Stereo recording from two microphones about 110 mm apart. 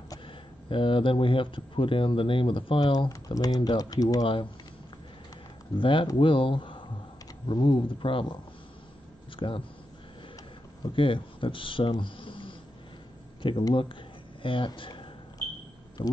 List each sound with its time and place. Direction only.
0.7 s speech: 50° left (ahead or behind); by 4.3 s 35° left (ahead or behind)
5.8 s speech: 50° left (ahead or behind)
9.4 s speech: 45° left (ahead or behind)
10.8 s speech: 50° left (ahead or behind)
14.8 s a sound: 50° left (ahead or behind)
16.0 s speech: 50° left (ahead or behind)